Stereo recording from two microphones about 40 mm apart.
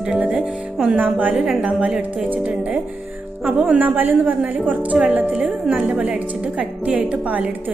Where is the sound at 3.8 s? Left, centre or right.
Right.